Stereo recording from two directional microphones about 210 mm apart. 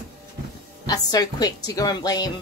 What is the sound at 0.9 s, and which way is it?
A woman's voice, 20° left (ahead or behind).